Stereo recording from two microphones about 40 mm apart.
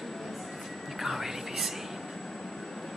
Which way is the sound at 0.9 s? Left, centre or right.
Centre.